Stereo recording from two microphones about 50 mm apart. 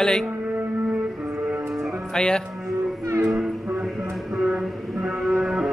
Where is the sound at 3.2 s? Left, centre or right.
Centre.